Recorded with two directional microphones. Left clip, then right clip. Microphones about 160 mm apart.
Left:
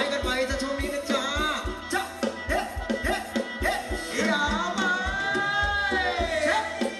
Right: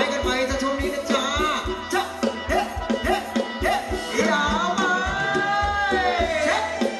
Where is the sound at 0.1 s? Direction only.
25° left (ahead or behind).